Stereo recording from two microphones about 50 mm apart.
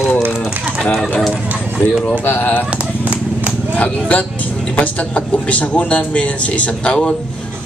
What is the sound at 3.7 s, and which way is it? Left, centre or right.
A man's voice, left.